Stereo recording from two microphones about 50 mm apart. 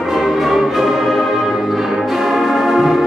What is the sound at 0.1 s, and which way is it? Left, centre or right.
Music, centre.